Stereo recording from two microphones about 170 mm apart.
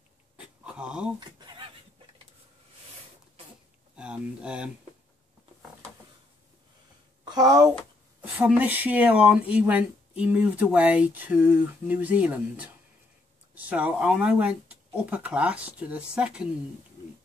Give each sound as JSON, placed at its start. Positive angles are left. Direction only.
{"t": 0.4, "sound": "wheeze", "side_deg": -5}
{"t": 1.2, "sound": "a sound", "side_deg": -25}
{"t": 3.9, "sound": "speech", "side_deg": -5}
{"t": 7.2, "sound": "speech", "side_deg": -25}
{"t": 8.2, "sound": "speech", "side_deg": -5}